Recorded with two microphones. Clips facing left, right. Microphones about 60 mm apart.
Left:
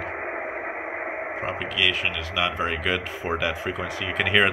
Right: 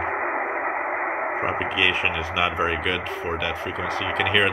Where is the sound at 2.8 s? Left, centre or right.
Centre.